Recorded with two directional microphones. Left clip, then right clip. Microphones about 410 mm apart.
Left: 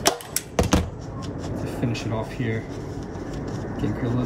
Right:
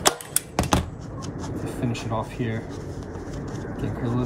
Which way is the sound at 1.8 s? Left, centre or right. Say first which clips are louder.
Right 1 dB; centre.